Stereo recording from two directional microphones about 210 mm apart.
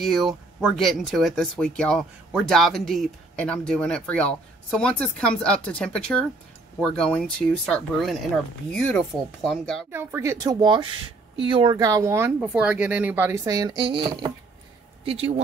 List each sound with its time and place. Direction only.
0.0 s speech: centre (ahead or behind)
9.8 s speech: 10° right (ahead or behind); by 15.4 s 30° right (ahead or behind)